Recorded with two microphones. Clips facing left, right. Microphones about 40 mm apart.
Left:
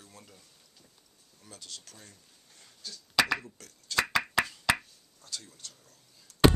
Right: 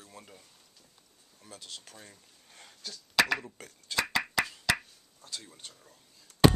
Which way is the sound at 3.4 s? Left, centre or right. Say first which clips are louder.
Right 3 dB; right.